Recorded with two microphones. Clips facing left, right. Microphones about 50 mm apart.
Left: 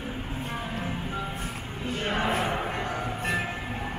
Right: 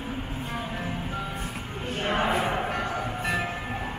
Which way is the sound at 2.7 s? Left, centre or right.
Centre.